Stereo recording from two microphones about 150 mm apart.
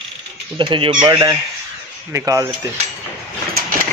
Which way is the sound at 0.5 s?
35° right (ahead or behind).